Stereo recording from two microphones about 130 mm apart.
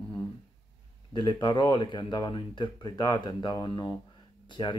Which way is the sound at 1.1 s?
35° left (ahead or behind).